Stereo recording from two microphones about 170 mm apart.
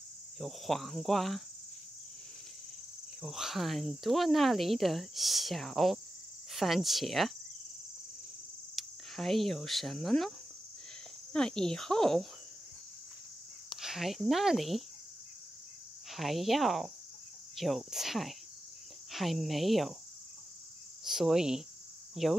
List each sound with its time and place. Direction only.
0.4 s speech: centre (ahead or behind)
3.2 s speech: centre (ahead or behind)
8.7 s speech: centre (ahead or behind)
11.3 s speech: 5° left (ahead or behind)
13.7 s speech: centre (ahead or behind)
16.1 s speech: centre (ahead or behind)
21.0 s speech: centre (ahead or behind)